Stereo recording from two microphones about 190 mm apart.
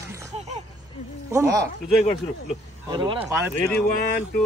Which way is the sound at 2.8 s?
25° right (ahead or behind).